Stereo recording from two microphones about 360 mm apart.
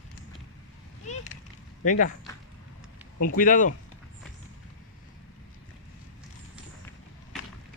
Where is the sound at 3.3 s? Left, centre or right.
Left.